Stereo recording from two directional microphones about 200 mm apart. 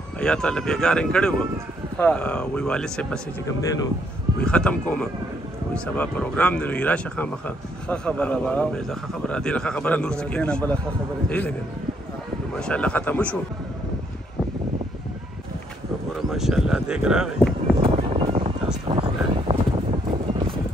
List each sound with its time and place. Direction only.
0.2 s speech: 5° left (ahead or behind)
3.4 s speech: 15° left (ahead or behind)
4.4 s speech: 5° left (ahead or behind)
12.5 s speech: 5° left (ahead or behind)
16.3 s speech: centre (ahead or behind)
17.9 s a sound: 30° right (ahead or behind)